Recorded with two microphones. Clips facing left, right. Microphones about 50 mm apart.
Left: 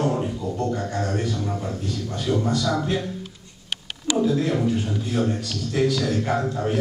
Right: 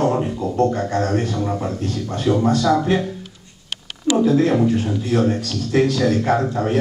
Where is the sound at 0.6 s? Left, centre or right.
Right.